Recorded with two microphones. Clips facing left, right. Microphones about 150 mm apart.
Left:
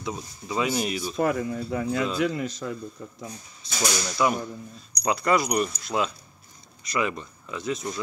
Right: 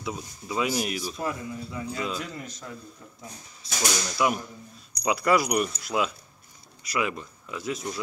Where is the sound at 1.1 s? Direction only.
65° left (ahead or behind).